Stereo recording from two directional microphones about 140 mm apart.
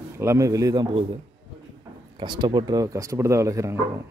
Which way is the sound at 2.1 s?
35° right (ahead or behind).